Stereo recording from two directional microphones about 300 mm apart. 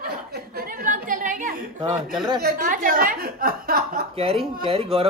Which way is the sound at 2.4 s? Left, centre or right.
Right.